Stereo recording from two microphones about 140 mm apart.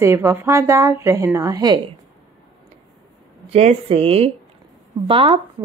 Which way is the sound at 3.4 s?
45° right (ahead or behind).